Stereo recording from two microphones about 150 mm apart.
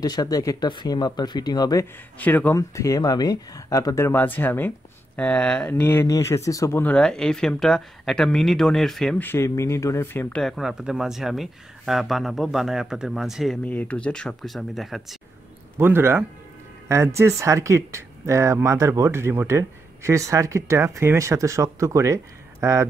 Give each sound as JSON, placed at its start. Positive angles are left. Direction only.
{"t": 0.0, "sound": "speech", "side_deg": 25}
{"t": 2.1, "sound": "speech", "side_deg": 10}
{"t": 9.2, "sound": "speech", "side_deg": 15}
{"t": 10.3, "sound": "speech", "side_deg": 0}
{"t": 13.7, "sound": "speech", "side_deg": 10}
{"t": 15.8, "sound": "speech", "side_deg": -15}